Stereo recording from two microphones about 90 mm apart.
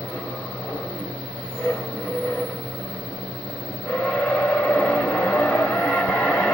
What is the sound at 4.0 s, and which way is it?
Vehicle, 15° left (ahead or behind).